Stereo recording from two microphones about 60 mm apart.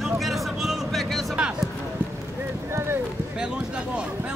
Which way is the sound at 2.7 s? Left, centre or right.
Right.